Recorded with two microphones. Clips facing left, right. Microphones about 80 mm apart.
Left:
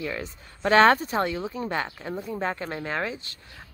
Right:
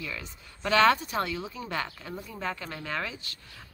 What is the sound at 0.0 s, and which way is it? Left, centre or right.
Speech, left.